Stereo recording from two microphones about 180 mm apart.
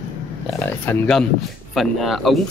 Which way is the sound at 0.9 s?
5° left (ahead or behind).